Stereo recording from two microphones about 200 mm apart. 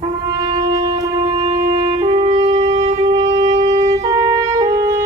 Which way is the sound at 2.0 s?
30° right (ahead or behind).